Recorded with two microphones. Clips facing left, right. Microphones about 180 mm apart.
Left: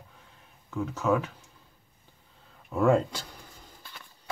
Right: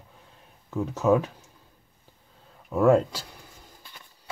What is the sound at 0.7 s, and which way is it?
Speech, 40° right (ahead or behind).